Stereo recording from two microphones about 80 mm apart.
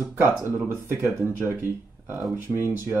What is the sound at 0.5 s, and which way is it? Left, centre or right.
Speech, right.